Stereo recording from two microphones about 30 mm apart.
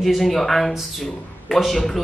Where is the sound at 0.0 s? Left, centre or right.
Centre.